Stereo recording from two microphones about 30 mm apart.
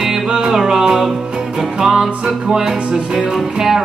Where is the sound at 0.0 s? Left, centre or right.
Centre.